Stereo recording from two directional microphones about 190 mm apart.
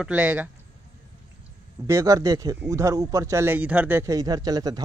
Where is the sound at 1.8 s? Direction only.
15° right (ahead or behind).